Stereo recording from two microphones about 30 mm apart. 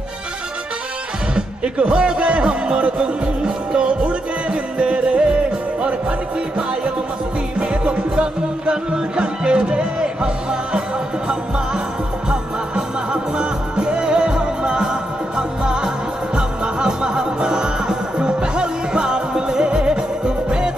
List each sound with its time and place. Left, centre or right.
1.3 s music: right
7.5 s music: right
12.3 s music: right